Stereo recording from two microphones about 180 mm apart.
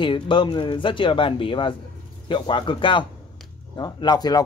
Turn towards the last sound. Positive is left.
turn(degrees=25)  # may be behind; listen again after turning